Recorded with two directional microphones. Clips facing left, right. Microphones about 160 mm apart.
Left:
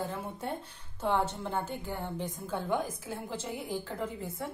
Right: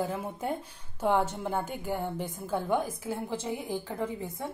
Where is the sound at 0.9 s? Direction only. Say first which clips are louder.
Right 3 dB; 10° right (ahead or behind).